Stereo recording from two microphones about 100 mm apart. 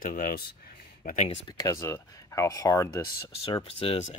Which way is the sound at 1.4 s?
35° left (ahead or behind).